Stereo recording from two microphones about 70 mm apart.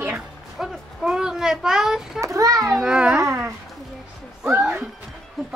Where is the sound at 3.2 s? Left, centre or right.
Right.